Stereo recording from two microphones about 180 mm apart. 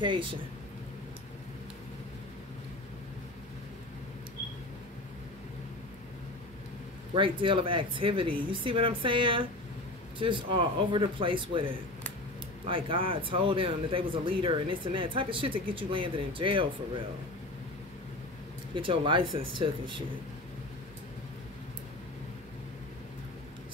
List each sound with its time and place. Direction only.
0.0 s speech: 25° right (ahead or behind)
7.2 s speech: 30° right (ahead or behind)
18.8 s speech: 25° right (ahead or behind)